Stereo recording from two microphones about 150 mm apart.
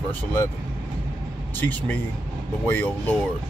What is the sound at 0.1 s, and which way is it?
Speech, 15° left (ahead or behind).